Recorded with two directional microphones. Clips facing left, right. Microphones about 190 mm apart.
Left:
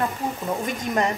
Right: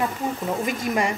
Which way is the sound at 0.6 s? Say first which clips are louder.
Left 1 dB; 5° right (ahead or behind).